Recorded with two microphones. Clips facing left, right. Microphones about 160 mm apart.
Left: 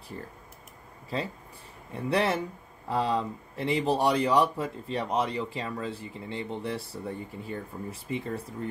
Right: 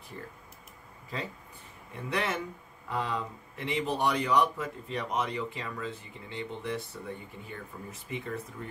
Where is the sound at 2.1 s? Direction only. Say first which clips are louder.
Left 6 dB; 35° left (ahead or behind).